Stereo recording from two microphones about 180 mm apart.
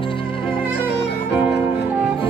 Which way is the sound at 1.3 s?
10° right (ahead or behind).